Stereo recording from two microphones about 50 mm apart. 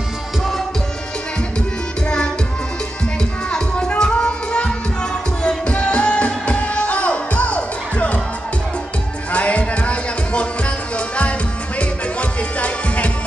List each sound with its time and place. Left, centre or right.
2.0 s music: centre
3.4 s music: centre
9.3 s music: left